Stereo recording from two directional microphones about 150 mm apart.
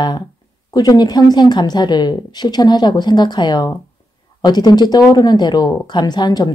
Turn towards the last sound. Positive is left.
turn(degrees=25)  # may be behind; listen again after turning